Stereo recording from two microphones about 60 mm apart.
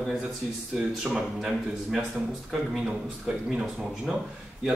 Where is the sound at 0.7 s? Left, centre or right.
Centre.